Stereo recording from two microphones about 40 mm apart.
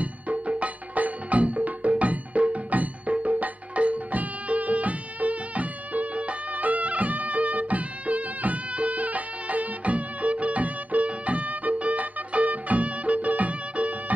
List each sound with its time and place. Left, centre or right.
0.0 s music: right